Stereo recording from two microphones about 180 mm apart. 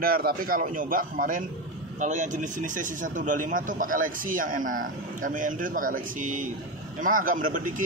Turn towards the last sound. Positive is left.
turn(degrees=-45)  # may be behind; listen again after turning